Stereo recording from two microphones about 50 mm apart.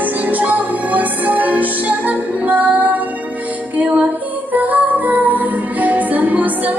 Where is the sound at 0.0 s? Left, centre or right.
Right.